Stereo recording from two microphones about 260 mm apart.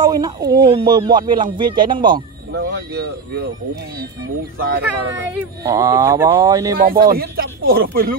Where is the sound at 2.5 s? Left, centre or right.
Right.